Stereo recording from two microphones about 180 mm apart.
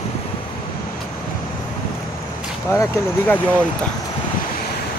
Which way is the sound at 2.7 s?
15° left (ahead or behind).